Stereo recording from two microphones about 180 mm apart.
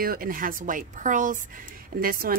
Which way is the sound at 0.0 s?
55° right (ahead or behind).